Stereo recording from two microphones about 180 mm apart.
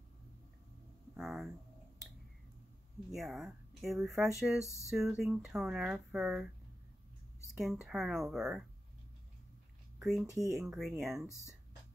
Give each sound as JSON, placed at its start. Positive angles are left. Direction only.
{"t": 1.1, "sound": "speech", "side_deg": 0}
{"t": 3.1, "sound": "speech", "side_deg": 0}
{"t": 4.6, "sound": "a sound", "side_deg": 15}
{"t": 4.9, "sound": "speech", "side_deg": 0}
{"t": 7.5, "sound": "speech", "side_deg": 0}
{"t": 9.9, "sound": "speech", "side_deg": 0}
{"t": 11.2, "sound": "a sound", "side_deg": 15}